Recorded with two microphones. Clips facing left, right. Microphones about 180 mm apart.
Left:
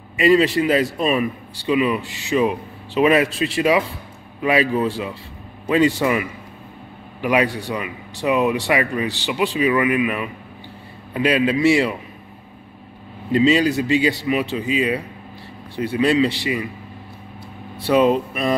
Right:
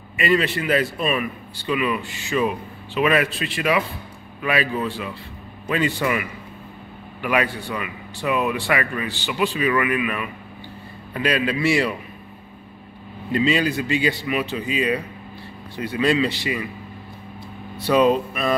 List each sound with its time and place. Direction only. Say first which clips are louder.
0.2 s a man's voice: left 6 dB; 30° left (ahead or behind)
13.3 s a man's voice: left 4 dB; 25° left (ahead or behind)
17.7 s a man's voice: left 1 dB; 25° left (ahead or behind)